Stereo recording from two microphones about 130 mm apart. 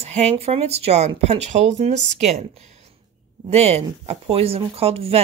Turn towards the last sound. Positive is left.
turn(degrees=-50)  # may be behind; listen again after turning